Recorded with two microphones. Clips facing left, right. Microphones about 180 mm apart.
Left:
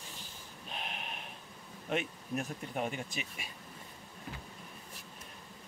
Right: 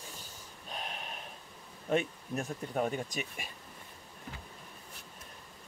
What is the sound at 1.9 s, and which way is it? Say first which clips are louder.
Speech: right 4 dB; 35° right (ahead or behind).